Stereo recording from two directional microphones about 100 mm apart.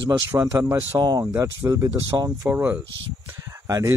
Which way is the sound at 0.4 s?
35° right (ahead or behind).